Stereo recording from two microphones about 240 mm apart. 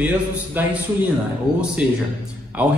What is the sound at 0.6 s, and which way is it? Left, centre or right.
Speech, centre.